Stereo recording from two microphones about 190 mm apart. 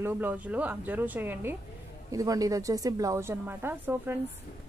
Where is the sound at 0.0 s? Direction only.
10° right (ahead or behind).